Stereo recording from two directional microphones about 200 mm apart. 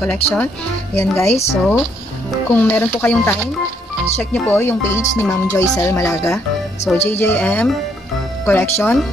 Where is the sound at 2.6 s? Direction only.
10° left (ahead or behind).